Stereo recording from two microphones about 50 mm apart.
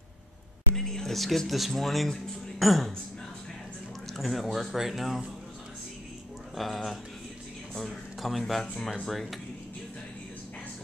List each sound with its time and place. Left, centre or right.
0.7 s speech: centre
4.2 s speech: centre
6.5 s speech: centre